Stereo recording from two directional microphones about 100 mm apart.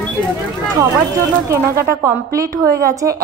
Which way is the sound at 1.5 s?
30° right (ahead or behind).